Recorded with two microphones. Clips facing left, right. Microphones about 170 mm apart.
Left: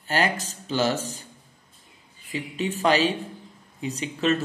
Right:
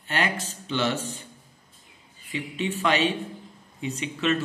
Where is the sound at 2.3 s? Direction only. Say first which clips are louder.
Left 1 dB; 40° left (ahead or behind).